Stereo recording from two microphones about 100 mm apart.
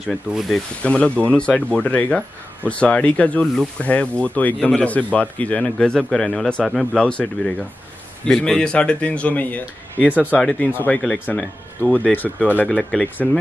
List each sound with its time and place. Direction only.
0.3 s speech: centre (ahead or behind)
0.8 s speech: 15° left (ahead or behind)